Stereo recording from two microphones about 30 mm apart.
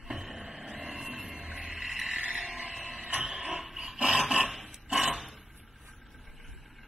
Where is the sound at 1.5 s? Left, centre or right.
Right.